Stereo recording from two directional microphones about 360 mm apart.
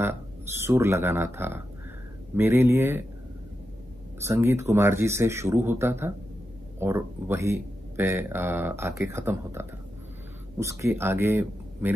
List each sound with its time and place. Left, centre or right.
0.6 s speech: centre
4.2 s speech: centre